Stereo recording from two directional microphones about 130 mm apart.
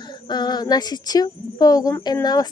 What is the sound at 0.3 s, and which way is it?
Speech, 35° left (ahead or behind).